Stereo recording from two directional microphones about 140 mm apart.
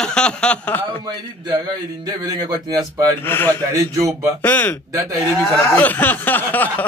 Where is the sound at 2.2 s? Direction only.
30° right (ahead or behind).